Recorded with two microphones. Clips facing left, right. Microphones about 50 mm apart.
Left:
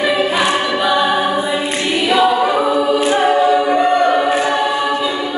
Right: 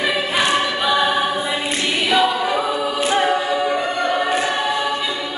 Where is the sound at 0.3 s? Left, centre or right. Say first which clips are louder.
Left 3 dB; centre.